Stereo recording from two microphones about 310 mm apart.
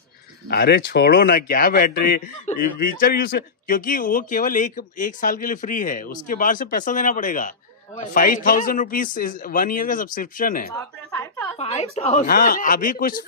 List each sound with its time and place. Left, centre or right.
0.5 s a man's voice: left
10.7 s a sound: centre
11.5 s a man's voice: centre